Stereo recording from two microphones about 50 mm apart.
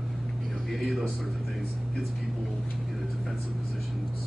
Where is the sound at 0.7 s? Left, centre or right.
Centre.